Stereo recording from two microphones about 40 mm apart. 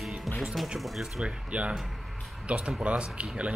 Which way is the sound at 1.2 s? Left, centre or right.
Right.